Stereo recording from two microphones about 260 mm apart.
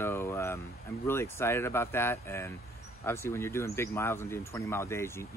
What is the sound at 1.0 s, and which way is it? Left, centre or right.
Speech, centre.